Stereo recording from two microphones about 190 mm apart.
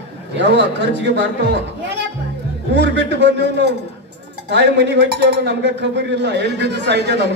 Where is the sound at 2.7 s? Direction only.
65° right (ahead or behind).